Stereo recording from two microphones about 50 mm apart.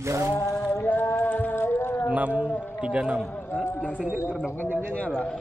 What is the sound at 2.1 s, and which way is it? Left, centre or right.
Speech, right.